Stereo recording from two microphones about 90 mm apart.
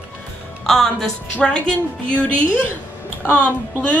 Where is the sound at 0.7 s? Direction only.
5° left (ahead or behind).